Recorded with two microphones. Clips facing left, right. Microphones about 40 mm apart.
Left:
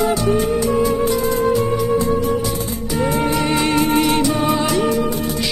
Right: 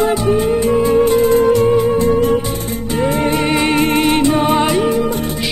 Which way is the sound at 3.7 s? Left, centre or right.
Right.